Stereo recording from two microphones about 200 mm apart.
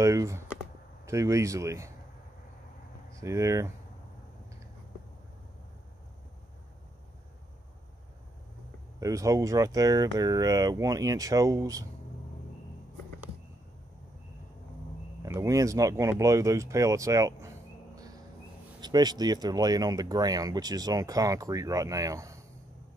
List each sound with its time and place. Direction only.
0.0 s speech: 15° right (ahead or behind)
3.2 s speech: 15° right (ahead or behind)
9.0 s speech: 15° right (ahead or behind)
15.2 s speech: 15° right (ahead or behind)
17.9 s a sound: 20° right (ahead or behind)
18.8 s speech: 20° right (ahead or behind)